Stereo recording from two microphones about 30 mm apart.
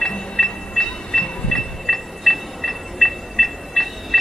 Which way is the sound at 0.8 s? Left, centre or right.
Left.